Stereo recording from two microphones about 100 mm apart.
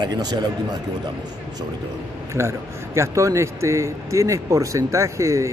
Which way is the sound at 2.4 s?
25° right (ahead or behind).